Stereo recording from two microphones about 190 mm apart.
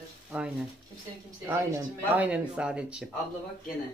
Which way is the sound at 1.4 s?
15° right (ahead or behind).